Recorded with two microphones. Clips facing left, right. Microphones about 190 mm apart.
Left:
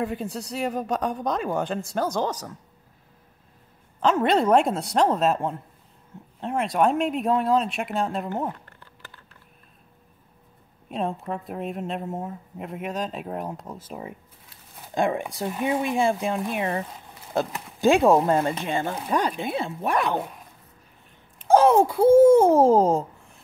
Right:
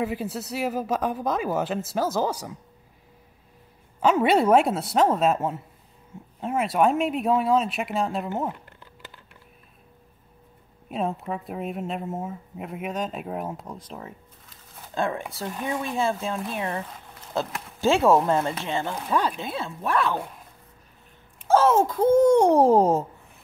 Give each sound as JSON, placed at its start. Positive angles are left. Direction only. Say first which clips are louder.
{"t": 0.0, "sound": "speech", "louder": "even", "side_deg": 0}
{"t": 4.0, "sound": "speech", "louder": "right 1 dB", "side_deg": -10}
{"t": 8.6, "sound": "typing", "louder": "right 2 dB", "side_deg": -15}
{"t": 10.9, "sound": "a child's voice", "louder": "even", "side_deg": 0}
{"t": 21.5, "sound": "a child's voice", "louder": "left 2 dB", "side_deg": 15}